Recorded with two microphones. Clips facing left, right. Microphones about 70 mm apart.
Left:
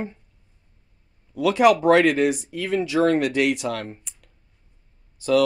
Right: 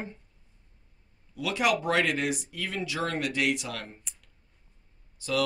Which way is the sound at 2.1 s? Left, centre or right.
Left.